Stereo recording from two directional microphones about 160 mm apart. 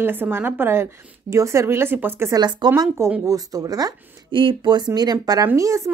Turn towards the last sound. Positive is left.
turn(degrees=-20)  # may be behind; listen again after turning